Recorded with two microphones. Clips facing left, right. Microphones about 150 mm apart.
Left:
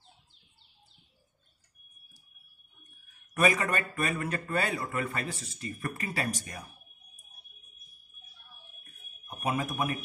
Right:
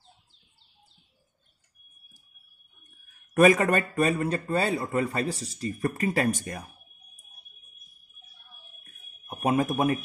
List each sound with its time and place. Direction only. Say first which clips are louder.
3.3 s speech: right 8 dB; 45° right (ahead or behind)
9.3 s speech: right 7 dB; 45° right (ahead or behind)